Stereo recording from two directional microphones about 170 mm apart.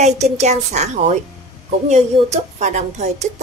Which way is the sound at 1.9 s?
40° right (ahead or behind).